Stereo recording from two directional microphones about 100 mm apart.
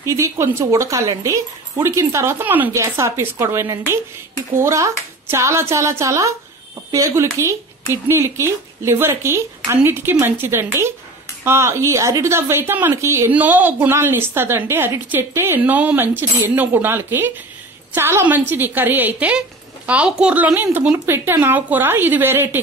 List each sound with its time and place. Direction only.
0.0 s a woman's voice: 30° right (ahead or behind)
13.3 s a woman's voice: 15° right (ahead or behind)